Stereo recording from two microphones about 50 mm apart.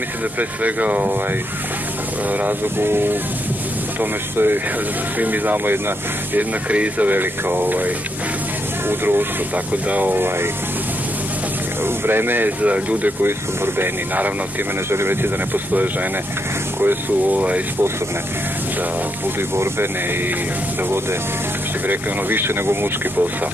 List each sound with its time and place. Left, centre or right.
0.4 s speech: right
2.8 s speech: right
6.7 s speech: right
9.7 s speech: right
11.8 s speech: right
12.6 s speech: right
14.9 s speech: right
15.7 s speech: right
19.5 s speech: right
21.8 s speech: right